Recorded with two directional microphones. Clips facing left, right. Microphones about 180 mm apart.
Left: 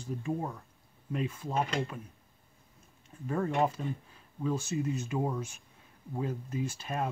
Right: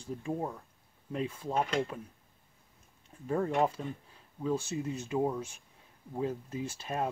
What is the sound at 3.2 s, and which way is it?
Speech, 25° right (ahead or behind).